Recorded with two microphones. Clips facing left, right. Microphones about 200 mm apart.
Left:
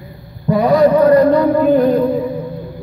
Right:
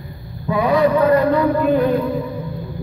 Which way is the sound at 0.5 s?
40° left (ahead or behind).